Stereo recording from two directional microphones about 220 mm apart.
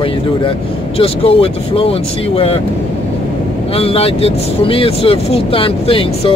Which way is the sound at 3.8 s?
25° left (ahead or behind).